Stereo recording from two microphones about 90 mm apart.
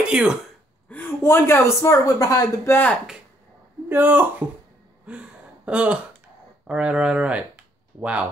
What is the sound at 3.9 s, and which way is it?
Speech, 20° right (ahead or behind).